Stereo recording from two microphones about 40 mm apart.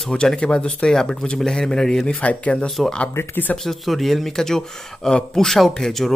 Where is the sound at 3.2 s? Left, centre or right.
Left.